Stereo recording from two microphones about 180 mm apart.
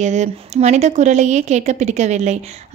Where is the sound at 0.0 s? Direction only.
40° right (ahead or behind).